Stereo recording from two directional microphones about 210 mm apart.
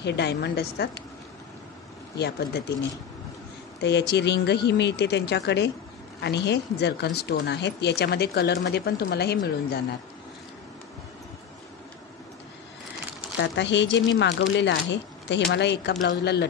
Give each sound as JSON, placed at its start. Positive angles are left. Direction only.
{"t": 0.0, "sound": "speech", "side_deg": 55}
{"t": 2.1, "sound": "speech", "side_deg": 50}
{"t": 4.1, "sound": "speech", "side_deg": 55}
{"t": 13.4, "sound": "speech", "side_deg": 60}